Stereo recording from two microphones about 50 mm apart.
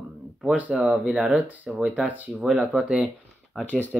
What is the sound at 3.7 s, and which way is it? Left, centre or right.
Speech, left.